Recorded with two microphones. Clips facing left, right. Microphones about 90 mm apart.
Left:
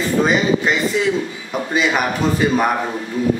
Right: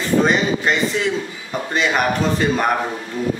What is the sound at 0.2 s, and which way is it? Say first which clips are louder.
A man's voice: left 4 dB; centre (ahead or behind).